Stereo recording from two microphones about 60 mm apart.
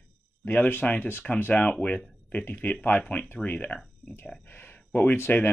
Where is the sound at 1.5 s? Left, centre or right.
Centre.